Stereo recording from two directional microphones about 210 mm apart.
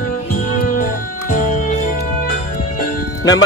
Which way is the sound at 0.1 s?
40° left (ahead or behind).